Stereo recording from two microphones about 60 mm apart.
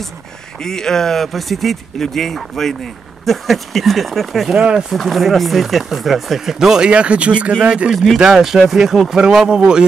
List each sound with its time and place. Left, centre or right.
0.6 s speech: centre
4.6 s speech: centre
4.9 s speech: centre
6.9 s speech: centre
7.9 s speech: centre